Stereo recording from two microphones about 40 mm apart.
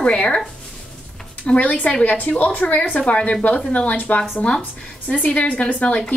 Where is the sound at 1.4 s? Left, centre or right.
Left.